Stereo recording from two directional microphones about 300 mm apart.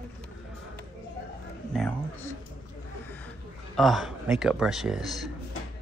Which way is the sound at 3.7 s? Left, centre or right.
Centre.